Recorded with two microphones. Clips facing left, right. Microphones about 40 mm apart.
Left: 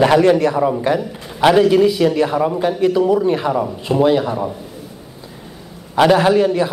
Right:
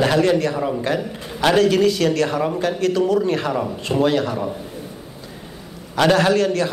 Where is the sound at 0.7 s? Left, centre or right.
Centre.